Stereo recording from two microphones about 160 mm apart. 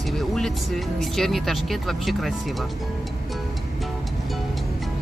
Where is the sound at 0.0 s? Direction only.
Centre (ahead or behind).